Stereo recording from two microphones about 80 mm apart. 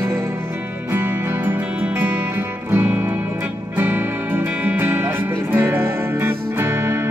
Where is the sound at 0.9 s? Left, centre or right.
Right.